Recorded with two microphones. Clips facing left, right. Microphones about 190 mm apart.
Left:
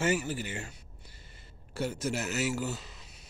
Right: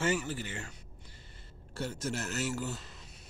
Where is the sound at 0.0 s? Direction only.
10° left (ahead or behind).